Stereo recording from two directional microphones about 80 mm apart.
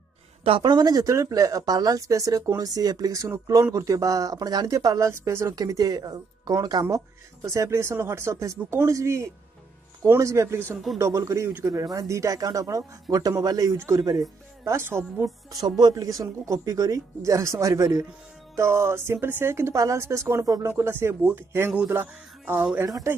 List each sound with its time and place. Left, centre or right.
0.6 s speech: right
1.1 s speech: right
5.5 s speech: right
7.4 s a woman's voice: right
14.6 s a woman's voice: right
15.6 s speech: right
18.6 s a woman's voice: right
20.6 s a woman's voice: right
22.4 s speech: centre